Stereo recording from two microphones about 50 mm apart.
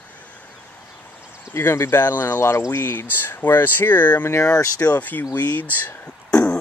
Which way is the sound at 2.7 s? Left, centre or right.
Left.